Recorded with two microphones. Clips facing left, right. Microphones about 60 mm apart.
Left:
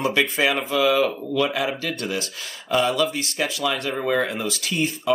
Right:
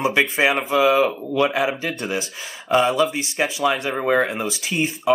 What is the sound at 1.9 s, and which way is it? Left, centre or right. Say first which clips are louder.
Speech: right 2 dB; centre.